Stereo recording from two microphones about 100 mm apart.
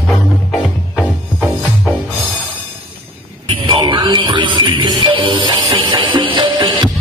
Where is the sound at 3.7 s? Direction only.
45° right (ahead or behind).